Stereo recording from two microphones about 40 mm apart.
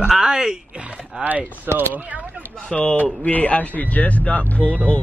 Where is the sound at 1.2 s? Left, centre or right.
Right.